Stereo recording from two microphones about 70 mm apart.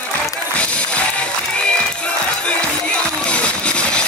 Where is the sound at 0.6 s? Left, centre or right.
Centre.